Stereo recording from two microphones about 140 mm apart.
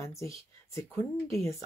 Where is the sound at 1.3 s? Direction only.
20° left (ahead or behind).